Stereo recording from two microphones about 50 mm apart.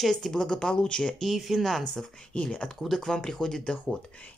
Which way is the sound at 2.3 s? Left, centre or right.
Left.